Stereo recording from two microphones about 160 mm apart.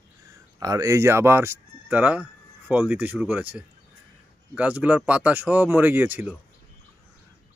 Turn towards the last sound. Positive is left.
turn(degrees=-10)  # may be behind; listen again after turning